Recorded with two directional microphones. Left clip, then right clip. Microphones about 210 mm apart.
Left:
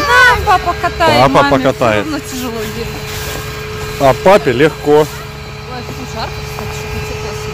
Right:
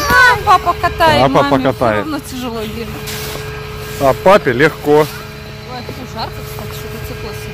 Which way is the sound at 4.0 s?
15° left (ahead or behind).